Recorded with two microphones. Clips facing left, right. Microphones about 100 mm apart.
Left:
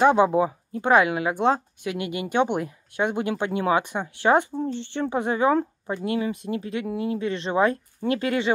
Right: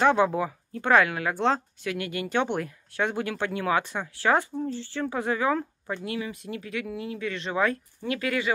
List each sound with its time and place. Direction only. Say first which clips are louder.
0.0 s speech: left 4 dB; 20° left (ahead or behind)